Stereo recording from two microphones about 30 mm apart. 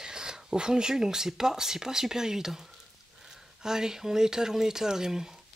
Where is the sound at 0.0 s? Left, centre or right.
Right.